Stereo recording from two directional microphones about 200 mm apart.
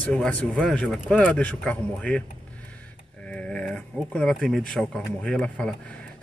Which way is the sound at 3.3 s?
5° left (ahead or behind).